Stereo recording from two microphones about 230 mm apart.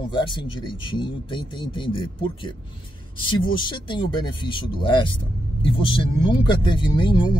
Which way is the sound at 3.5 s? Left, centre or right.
Centre.